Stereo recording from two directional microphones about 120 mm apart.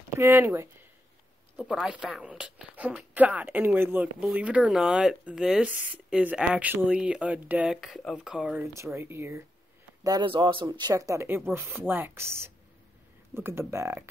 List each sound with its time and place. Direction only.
0.2 s speech: 20° right (ahead or behind)
1.6 s a woman's voice: 5° right (ahead or behind)
8.7 s speech: 25° right (ahead or behind)
10.0 s speech: 40° right (ahead or behind)
10.9 s speech: 25° right (ahead or behind)